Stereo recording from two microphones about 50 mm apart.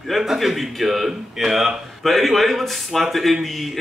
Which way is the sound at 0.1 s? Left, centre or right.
Centre.